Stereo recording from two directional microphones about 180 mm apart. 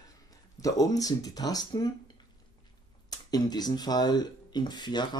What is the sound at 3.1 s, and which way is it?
Speech, 20° left (ahead or behind).